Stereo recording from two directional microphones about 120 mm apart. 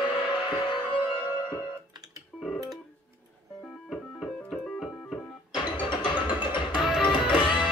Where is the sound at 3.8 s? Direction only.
Centre (ahead or behind).